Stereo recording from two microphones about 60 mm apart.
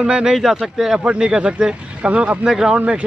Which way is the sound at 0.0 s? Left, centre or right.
Centre.